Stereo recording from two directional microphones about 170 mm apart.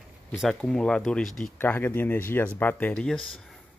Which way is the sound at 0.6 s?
5° left (ahead or behind).